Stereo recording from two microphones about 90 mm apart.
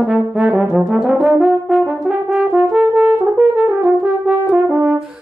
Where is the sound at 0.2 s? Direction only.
15° right (ahead or behind).